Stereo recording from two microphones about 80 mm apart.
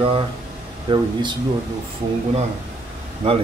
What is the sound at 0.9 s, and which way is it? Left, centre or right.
Speech, right.